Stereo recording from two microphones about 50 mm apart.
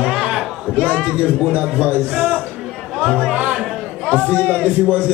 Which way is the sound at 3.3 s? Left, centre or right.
Right.